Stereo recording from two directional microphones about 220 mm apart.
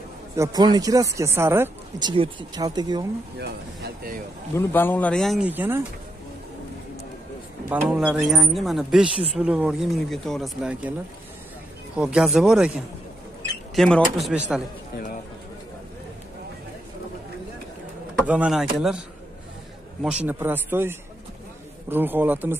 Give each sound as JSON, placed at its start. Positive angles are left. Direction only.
{"t": 0.4, "sound": "speech", "side_deg": -20}
{"t": 3.3, "sound": "speech", "side_deg": -50}
{"t": 4.6, "sound": "speech", "side_deg": 10}
{"t": 7.7, "sound": "speech", "side_deg": -5}
{"t": 12.0, "sound": "speech", "side_deg": -5}
{"t": 13.7, "sound": "speech", "side_deg": 0}
{"t": 18.2, "sound": "speech", "side_deg": -5}